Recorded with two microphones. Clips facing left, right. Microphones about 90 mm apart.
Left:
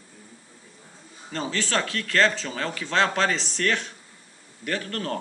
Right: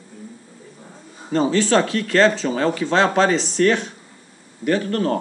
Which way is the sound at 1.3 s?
20° right (ahead or behind).